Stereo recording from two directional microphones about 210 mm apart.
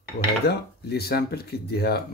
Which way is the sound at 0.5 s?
50° left (ahead or behind).